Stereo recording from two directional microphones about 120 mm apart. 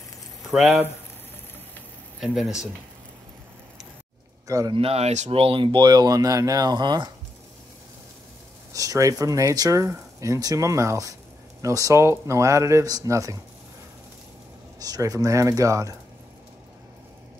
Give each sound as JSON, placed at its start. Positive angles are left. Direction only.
{"t": 0.5, "sound": "speech", "side_deg": 0}
{"t": 2.1, "sound": "speech", "side_deg": 0}
{"t": 4.5, "sound": "speech", "side_deg": -30}
{"t": 4.7, "sound": "speech", "side_deg": -55}
{"t": 5.3, "sound": "speech", "side_deg": -50}
{"t": 8.7, "sound": "speech", "side_deg": -30}
{"t": 14.8, "sound": "speech", "side_deg": -30}